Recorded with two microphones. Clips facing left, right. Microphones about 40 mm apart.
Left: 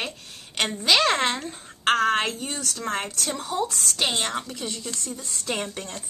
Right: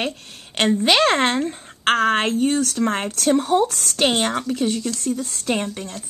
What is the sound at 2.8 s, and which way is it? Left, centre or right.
A woman's voice, right.